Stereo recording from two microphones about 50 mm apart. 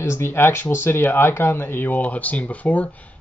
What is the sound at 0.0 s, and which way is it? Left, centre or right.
Speech, left.